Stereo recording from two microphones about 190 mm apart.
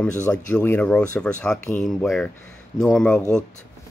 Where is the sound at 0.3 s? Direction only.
10° left (ahead or behind).